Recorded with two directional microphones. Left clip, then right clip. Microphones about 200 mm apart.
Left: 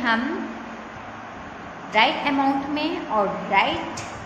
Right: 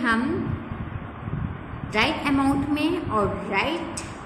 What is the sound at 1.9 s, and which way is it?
A woman's voice, 20° right (ahead or behind).